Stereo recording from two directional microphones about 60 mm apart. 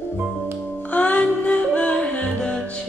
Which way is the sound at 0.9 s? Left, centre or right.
Left.